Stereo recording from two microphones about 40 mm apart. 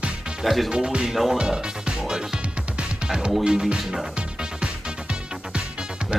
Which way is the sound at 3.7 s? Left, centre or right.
Centre.